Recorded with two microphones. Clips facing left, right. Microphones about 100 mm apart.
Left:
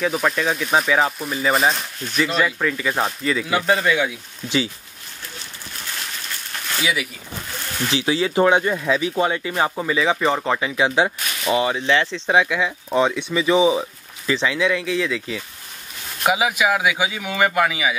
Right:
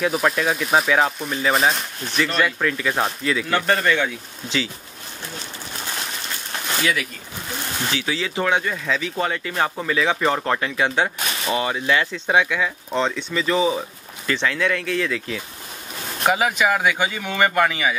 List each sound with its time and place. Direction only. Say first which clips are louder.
0.0 s speech: even; centre (ahead or behind)
6.8 s speech: even; 5° left (ahead or behind)
7.9 s speech: left 7 dB; 20° left (ahead or behind)
11.4 s speech: left 4 dB; 20° left (ahead or behind)
11.7 s speech: left 1 dB; centre (ahead or behind)